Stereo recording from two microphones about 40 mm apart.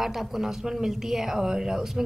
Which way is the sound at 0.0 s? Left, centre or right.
Centre.